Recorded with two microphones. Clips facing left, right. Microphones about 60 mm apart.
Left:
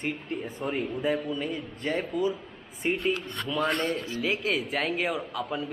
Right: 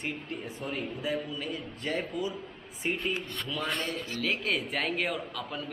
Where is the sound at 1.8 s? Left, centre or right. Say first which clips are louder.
Left 4 dB; centre.